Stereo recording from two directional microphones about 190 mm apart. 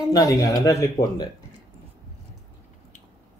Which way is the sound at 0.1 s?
20° left (ahead or behind).